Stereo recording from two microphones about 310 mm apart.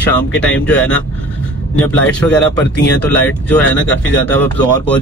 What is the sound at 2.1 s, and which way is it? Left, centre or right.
Speech, centre.